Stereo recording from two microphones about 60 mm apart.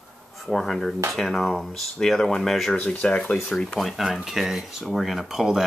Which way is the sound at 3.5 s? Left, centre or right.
Centre.